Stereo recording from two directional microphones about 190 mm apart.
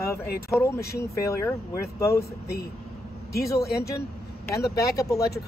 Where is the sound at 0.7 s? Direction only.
55° left (ahead or behind).